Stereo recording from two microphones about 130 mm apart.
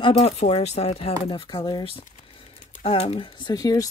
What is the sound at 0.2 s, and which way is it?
Speech, 55° left (ahead or behind).